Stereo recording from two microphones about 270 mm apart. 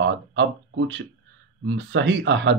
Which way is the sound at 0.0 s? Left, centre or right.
Right.